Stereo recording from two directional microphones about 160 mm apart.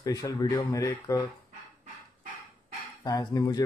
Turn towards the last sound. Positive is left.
turn(degrees=25)  # may be behind; listen again after turning